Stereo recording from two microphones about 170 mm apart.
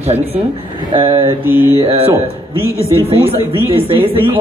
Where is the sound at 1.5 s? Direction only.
10° right (ahead or behind).